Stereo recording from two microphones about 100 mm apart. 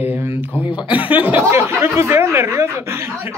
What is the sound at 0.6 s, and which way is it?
Speech, 55° left (ahead or behind).